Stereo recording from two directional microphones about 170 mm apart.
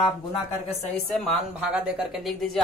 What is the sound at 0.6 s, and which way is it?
A woman's voice, centre (ahead or behind).